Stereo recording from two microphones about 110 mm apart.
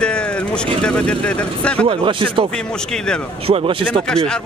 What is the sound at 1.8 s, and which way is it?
Speech, 50° right (ahead or behind).